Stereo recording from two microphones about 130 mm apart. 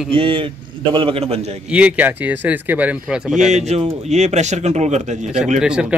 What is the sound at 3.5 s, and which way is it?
Speech, 60° right (ahead or behind).